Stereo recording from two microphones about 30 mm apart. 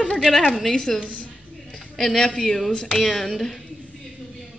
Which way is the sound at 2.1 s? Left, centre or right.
Centre.